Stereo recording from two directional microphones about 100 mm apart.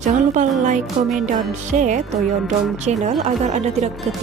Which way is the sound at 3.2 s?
90° right.